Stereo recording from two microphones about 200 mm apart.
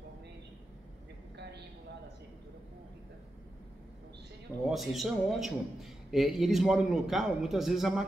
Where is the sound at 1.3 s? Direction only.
55° right (ahead or behind).